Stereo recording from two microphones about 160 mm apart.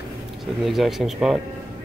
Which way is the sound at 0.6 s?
Centre (ahead or behind).